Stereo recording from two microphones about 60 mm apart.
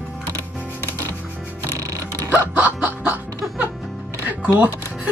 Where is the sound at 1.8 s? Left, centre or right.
Right.